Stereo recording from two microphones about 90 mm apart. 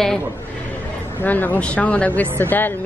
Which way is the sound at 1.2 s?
20° left (ahead or behind).